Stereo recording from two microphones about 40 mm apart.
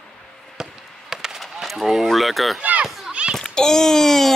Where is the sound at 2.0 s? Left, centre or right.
Centre.